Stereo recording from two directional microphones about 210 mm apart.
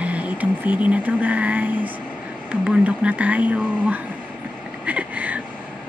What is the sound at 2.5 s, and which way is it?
Speech, 5° right (ahead or behind).